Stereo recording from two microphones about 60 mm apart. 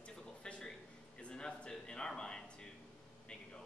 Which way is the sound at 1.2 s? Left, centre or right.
Centre.